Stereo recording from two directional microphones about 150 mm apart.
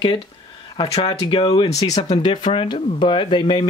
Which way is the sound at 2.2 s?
30° left (ahead or behind).